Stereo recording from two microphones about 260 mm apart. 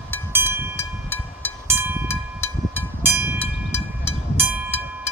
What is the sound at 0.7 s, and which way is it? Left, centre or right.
Train, centre.